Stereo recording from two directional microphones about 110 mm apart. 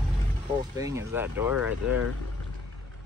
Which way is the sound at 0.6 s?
30° right (ahead or behind).